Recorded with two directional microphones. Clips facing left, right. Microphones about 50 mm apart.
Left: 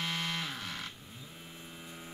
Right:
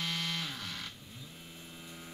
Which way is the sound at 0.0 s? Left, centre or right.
Centre.